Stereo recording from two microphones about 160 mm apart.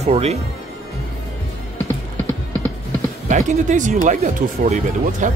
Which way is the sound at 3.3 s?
50° right (ahead or behind).